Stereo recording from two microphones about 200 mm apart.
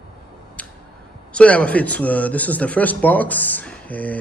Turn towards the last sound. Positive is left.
turn(degrees=5)  # may be behind; listen again after turning